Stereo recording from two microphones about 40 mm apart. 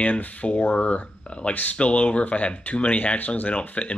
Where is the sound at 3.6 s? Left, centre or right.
Left.